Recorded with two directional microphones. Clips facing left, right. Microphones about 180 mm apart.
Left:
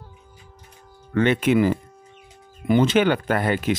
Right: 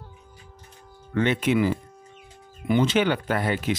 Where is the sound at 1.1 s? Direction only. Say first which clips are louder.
Left 4 dB; 55° left (ahead or behind).